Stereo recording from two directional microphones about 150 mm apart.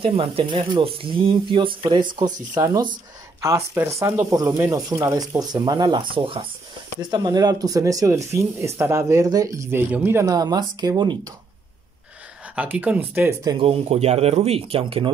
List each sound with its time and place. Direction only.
0.0 s speech: 40° right (ahead or behind)
12.5 s speech: 10° right (ahead or behind)
13.6 s speech: 40° right (ahead or behind)